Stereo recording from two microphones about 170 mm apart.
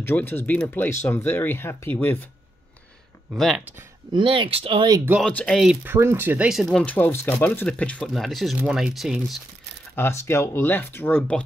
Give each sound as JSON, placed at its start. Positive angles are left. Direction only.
{"t": 0.0, "sound": "speech", "side_deg": 10}
{"t": 3.3, "sound": "speech", "side_deg": 0}
{"t": 4.1, "sound": "speech", "side_deg": -30}
{"t": 5.2, "sound": "speech", "side_deg": 5}
{"t": 5.9, "sound": "speech", "side_deg": -15}
{"t": 9.9, "sound": "speech", "side_deg": 15}